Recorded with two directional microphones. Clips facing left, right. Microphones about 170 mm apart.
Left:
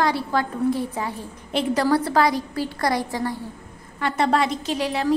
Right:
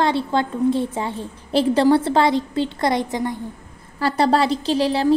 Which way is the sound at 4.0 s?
35° right (ahead or behind).